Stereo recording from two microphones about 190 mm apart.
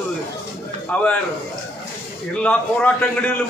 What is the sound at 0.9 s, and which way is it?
Speech, 10° left (ahead or behind).